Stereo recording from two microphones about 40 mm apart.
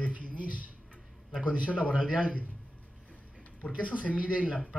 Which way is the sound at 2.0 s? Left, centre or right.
Right.